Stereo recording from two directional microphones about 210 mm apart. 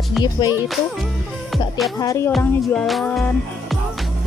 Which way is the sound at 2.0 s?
15° left (ahead or behind).